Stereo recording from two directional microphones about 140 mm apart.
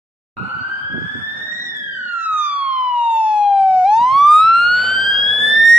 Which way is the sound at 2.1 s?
15° right (ahead or behind).